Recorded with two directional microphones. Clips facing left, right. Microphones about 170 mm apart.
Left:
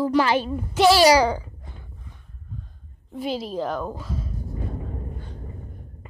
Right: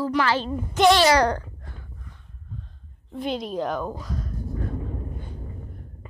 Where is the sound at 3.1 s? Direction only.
5° left (ahead or behind).